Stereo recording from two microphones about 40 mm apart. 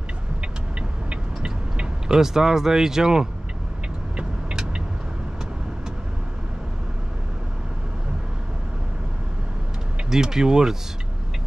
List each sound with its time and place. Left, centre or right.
0.4 s vehicle: right
2.1 s speech: centre
4.2 s vehicle: right
10.0 s speech: centre